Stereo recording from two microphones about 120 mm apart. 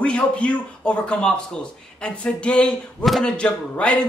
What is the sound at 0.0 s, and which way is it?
A man's voice, 10° left (ahead or behind).